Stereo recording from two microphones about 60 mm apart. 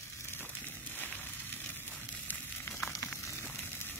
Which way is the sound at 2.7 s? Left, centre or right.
Centre.